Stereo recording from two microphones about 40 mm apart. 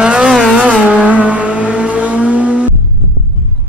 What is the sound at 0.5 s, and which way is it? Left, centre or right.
Vehicle, right.